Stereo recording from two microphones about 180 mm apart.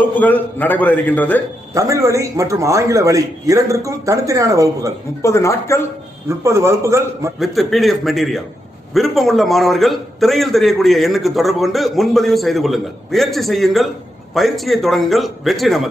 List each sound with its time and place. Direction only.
0.0 s a man's voice: 10° left (ahead or behind)
1.7 s a man's voice: 20° right (ahead or behind)
5.2 s a man's voice: 15° left (ahead or behind)
6.2 s a man's voice: 15° right (ahead or behind)
7.3 s a man's voice: centre (ahead or behind)